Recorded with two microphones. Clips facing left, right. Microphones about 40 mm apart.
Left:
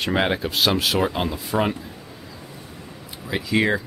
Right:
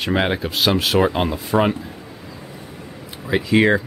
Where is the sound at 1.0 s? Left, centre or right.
Centre.